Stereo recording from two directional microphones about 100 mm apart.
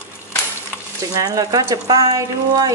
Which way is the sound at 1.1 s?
35° right (ahead or behind).